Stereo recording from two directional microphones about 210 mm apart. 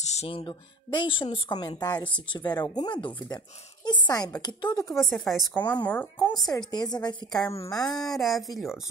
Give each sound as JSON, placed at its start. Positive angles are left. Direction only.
{"t": 0.0, "sound": "speech", "side_deg": 30}
{"t": 4.9, "sound": "a woman's voice", "side_deg": 0}
{"t": 8.1, "sound": "a woman's voice", "side_deg": 0}